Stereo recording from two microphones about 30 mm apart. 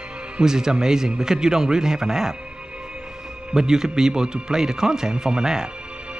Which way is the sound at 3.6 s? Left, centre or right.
Centre.